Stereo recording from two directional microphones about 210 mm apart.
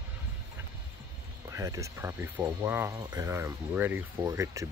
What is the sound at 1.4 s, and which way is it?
Speech, 15° right (ahead or behind).